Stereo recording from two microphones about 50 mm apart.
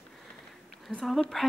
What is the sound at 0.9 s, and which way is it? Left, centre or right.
Speech, left.